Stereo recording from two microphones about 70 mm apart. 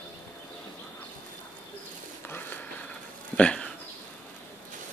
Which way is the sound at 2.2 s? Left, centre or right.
Left.